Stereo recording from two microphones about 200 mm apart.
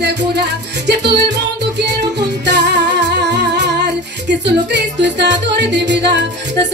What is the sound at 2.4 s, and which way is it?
Music, 60° right (ahead or behind).